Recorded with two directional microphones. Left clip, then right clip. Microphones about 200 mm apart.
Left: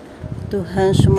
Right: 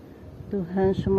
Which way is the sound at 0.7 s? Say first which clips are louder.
Left 7 dB; 5° left (ahead or behind).